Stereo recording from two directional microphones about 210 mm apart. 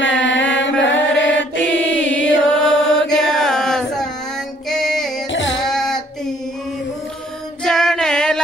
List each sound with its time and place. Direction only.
0.0 s mantra: 60° left (ahead or behind)
2.6 s chant: 5° left (ahead or behind)
4.6 s music: centre (ahead or behind)
5.3 s carnatic music: 60° left (ahead or behind)
5.7 s child singing: centre (ahead or behind)
7.6 s music: 5° left (ahead or behind)